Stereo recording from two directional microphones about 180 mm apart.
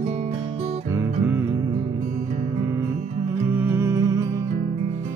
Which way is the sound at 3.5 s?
15° right (ahead or behind).